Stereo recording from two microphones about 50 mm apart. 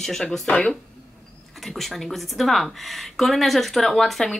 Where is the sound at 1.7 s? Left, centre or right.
Centre.